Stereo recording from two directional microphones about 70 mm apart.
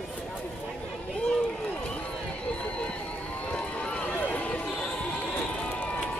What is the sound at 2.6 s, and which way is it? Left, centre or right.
Run, centre.